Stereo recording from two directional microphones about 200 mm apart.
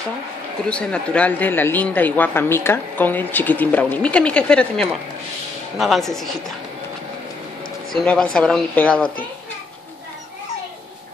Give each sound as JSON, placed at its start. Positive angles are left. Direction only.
{"t": 0.7, "sound": "speech", "side_deg": 5}
{"t": 7.9, "sound": "speech", "side_deg": 5}